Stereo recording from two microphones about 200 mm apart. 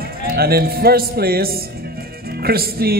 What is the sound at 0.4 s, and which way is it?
Speech, 50° right (ahead or behind).